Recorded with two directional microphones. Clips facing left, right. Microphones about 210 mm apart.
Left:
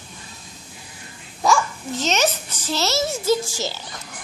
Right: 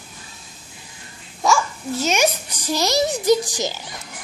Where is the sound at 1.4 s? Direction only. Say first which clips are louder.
Even; centre (ahead or behind).